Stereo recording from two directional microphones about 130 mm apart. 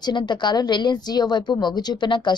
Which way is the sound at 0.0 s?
35° left (ahead or behind).